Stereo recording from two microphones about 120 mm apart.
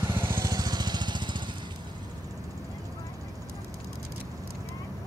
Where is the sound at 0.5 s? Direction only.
35° right (ahead or behind).